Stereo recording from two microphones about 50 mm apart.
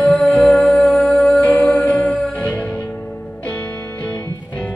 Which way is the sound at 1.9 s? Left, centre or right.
Left.